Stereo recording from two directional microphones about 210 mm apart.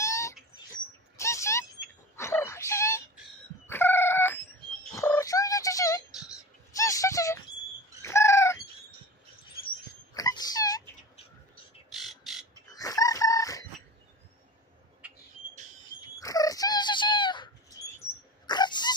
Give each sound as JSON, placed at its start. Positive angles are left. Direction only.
{"t": 0.0, "sound": "bird", "side_deg": 15}
{"t": 1.1, "sound": "a sound", "side_deg": 15}
{"t": 2.1, "sound": "wail", "side_deg": 15}
{"t": 3.6, "sound": "chicken", "side_deg": 10}
{"t": 4.9, "sound": "cat", "side_deg": 15}
{"t": 6.7, "sound": "music", "side_deg": 15}
{"t": 8.0, "sound": "fowl", "side_deg": 15}
{"t": 10.1, "sound": "wail", "side_deg": 20}
{"t": 11.9, "sound": "bird", "side_deg": 0}
{"t": 12.6, "sound": "chicken", "side_deg": 15}
{"t": 16.2, "sound": "bird", "side_deg": 15}
{"t": 18.5, "sound": "dog", "side_deg": 20}